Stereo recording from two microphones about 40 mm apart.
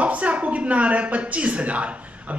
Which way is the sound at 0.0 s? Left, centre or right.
Right.